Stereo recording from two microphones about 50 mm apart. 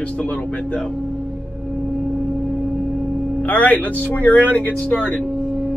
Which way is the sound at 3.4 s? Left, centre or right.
Left.